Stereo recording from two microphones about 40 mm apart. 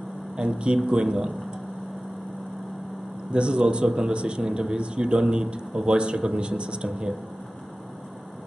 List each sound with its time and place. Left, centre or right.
0.4 s a man's voice: right
3.3 s a man's voice: right